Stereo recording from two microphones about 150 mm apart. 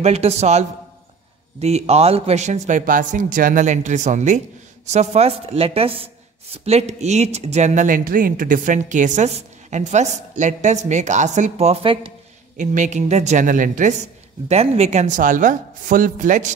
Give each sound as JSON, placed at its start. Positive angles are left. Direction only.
{"t": 0.0, "sound": "speech", "side_deg": -45}
{"t": 12.5, "sound": "speech", "side_deg": -55}
{"t": 14.5, "sound": "speech", "side_deg": -45}